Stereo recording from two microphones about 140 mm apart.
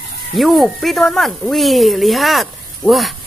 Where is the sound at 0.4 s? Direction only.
Centre (ahead or behind).